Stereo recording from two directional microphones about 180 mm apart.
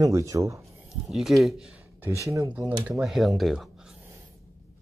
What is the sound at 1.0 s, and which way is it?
Speech, centre (ahead or behind).